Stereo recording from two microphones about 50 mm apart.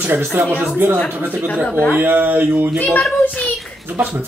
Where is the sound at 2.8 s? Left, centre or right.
Left.